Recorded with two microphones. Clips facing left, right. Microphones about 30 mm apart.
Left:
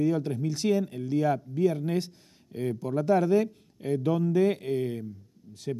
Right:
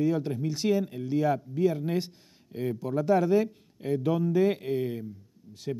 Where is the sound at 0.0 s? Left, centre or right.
Centre.